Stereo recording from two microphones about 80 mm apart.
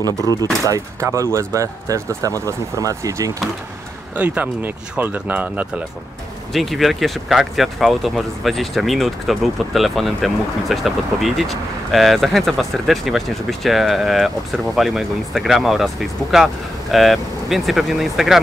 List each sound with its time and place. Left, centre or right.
0.0 s speech: left
1.0 s speech: right
4.2 s speech: right
6.5 s speech: centre